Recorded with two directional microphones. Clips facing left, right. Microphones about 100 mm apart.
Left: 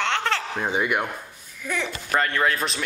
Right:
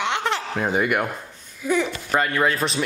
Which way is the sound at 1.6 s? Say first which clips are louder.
Right 7 dB; 15° right (ahead or behind).